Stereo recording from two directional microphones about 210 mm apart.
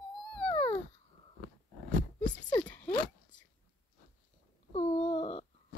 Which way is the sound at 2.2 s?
20° left (ahead or behind).